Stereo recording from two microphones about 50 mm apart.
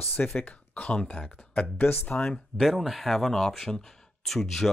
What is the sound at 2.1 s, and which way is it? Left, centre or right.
Speech, centre.